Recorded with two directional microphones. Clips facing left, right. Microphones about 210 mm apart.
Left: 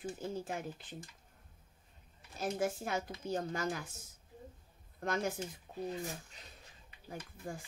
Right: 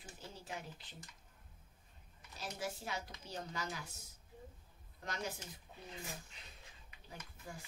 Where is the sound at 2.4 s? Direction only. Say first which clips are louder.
Left 9 dB; 50° left (ahead or behind).